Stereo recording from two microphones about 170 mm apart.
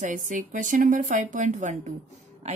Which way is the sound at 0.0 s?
50° right (ahead or behind).